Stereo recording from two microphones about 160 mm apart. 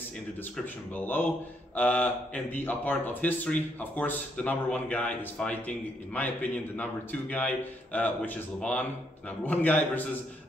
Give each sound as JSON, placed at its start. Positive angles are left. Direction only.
{"t": 0.9, "sound": "speech", "side_deg": 10}